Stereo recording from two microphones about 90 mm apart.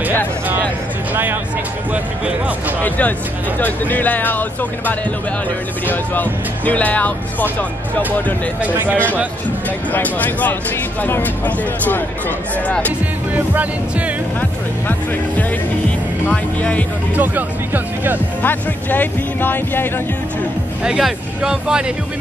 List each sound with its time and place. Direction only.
1.1 s speech: 20° right (ahead or behind)
2.8 s speech: 20° left (ahead or behind)
6.1 s speech: 20° left (ahead or behind)
8.5 s speech: 20° right (ahead or behind)
9.9 s speech: 20° left (ahead or behind)
13.3 s speech: 15° right (ahead or behind)
16.3 s speech: 15° left (ahead or behind)
17.1 s speech: 20° right (ahead or behind)
18.4 s speech: 20° left (ahead or behind)
20.8 s speech: 10° right (ahead or behind)